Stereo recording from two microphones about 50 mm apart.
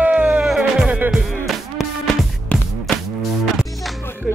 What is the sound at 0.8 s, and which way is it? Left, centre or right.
Music, right.